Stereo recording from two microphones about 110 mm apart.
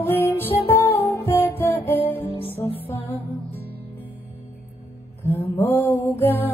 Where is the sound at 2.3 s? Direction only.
60° left (ahead or behind).